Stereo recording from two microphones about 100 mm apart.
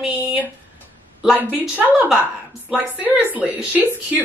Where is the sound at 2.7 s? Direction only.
15° right (ahead or behind).